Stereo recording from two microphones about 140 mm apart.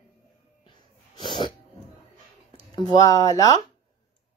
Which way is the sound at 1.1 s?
35° left (ahead or behind).